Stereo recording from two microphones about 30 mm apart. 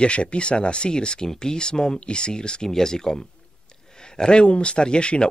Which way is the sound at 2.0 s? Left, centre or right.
Left.